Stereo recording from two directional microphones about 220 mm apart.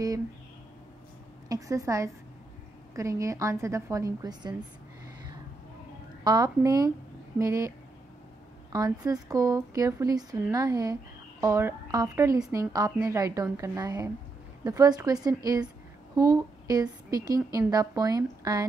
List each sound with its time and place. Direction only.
1.5 s speech: 15° right (ahead or behind)
6.2 s speech: 15° right (ahead or behind)
8.7 s a woman's voice: 15° right (ahead or behind)